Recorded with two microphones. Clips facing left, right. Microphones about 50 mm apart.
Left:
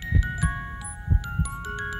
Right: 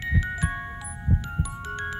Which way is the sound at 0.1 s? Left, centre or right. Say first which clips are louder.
Left 1 dB; right.